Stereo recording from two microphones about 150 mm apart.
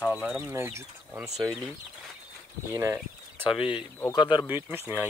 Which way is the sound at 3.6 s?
35° left (ahead or behind).